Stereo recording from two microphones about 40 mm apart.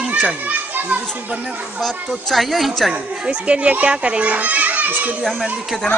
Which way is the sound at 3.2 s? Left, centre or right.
Right.